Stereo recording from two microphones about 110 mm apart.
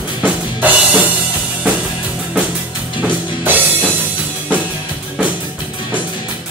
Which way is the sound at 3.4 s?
15° right (ahead or behind).